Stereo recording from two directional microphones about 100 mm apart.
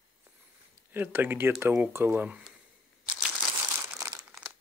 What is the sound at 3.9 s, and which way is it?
Crumpling, 30° right (ahead or behind).